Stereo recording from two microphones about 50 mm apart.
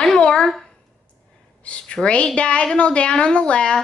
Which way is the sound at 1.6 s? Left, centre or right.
Left.